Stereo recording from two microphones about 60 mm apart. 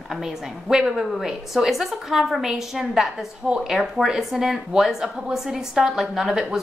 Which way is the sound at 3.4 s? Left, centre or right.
Centre.